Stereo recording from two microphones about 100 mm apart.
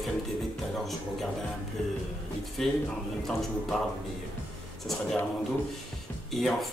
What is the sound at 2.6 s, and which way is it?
Speech, 5° left (ahead or behind).